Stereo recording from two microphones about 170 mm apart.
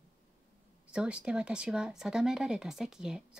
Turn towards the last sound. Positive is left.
turn(degrees=-5)  # may be behind; listen again after turning